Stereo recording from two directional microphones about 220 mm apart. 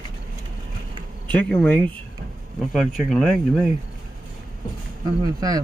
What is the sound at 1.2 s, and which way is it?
Speech, 5° left (ahead or behind).